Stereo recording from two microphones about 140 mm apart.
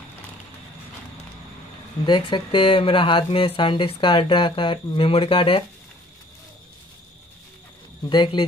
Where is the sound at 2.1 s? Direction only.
35° left (ahead or behind).